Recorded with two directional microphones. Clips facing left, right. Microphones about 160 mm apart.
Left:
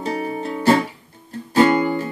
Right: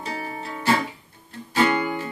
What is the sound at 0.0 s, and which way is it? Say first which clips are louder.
Music: left 7 dB; 40° left (ahead or behind).